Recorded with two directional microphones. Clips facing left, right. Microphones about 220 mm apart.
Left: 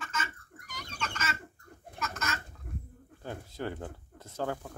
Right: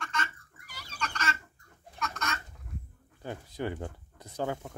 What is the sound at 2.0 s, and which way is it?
Chicken, 5° left (ahead or behind).